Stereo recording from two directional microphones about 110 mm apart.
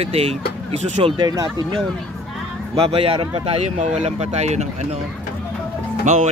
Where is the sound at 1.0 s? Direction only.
40° right (ahead or behind).